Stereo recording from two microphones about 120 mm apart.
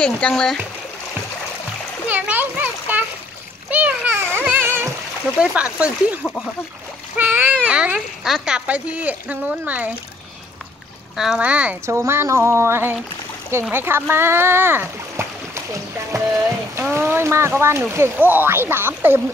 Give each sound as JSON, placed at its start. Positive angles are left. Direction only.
{"t": 0.0, "sound": "speech", "side_deg": 10}
{"t": 2.0, "sound": "a sound", "side_deg": -15}
{"t": 5.4, "sound": "speech", "side_deg": -10}
{"t": 7.2, "sound": "speech", "side_deg": -15}
{"t": 11.1, "sound": "speech", "side_deg": -5}
{"t": 11.8, "sound": "speech", "side_deg": -25}